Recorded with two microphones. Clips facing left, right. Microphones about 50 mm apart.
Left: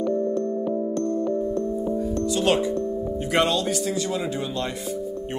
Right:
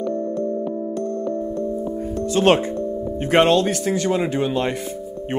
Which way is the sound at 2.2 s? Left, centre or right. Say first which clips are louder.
Right 6 dB; right.